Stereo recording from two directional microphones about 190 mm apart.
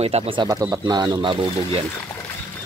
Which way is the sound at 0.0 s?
35° right (ahead or behind).